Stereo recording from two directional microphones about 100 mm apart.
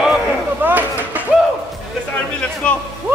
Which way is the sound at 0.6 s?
20° right (ahead or behind).